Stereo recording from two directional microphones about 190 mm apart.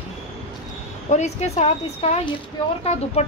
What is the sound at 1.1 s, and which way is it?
A woman's voice, 35° left (ahead or behind).